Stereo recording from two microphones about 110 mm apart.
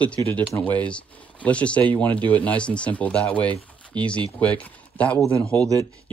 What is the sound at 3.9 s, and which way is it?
Speech, 45° right (ahead or behind).